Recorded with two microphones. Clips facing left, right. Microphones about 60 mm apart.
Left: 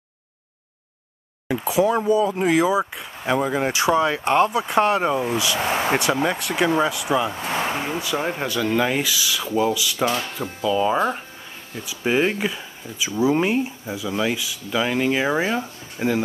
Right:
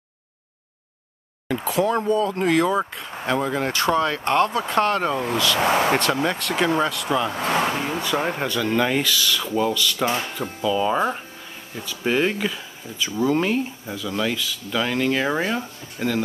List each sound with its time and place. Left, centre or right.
1.5 s speech: centre
7.7 s speech: centre
8.0 s speech: centre